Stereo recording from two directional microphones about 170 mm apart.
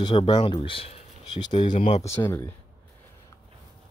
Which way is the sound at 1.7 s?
45° left (ahead or behind).